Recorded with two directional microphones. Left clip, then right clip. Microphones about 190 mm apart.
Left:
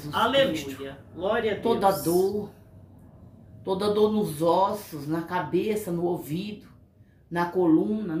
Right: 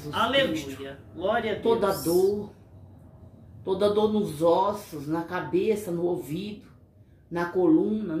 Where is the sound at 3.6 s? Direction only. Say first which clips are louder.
Even; 25° left (ahead or behind).